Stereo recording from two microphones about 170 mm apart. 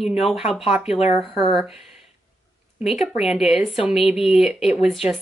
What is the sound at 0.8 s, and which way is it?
Speech, 35° left (ahead or behind).